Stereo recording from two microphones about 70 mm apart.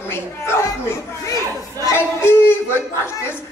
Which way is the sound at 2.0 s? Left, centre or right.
Left.